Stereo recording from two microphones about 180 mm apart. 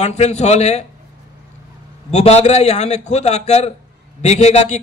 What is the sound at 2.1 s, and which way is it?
Speech, 40° left (ahead or behind).